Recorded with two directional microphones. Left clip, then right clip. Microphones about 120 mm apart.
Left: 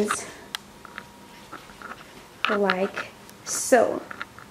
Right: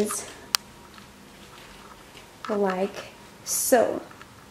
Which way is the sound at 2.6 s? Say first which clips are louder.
Right 2 dB; 5° left (ahead or behind).